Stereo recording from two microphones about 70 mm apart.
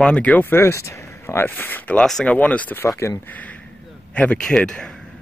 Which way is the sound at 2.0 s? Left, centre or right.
Centre.